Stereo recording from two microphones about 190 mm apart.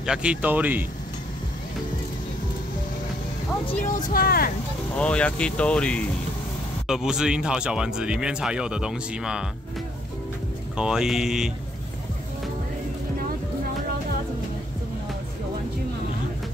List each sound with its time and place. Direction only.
0.0 s speech: 5° right (ahead or behind)
3.8 s speech: 45° left (ahead or behind)
4.9 s speech: 5° left (ahead or behind)
10.8 s speech: 5° right (ahead or behind)